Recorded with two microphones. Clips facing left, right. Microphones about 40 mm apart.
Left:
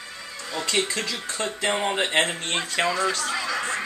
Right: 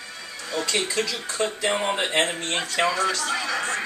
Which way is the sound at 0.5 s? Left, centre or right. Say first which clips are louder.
Right 1 dB; centre.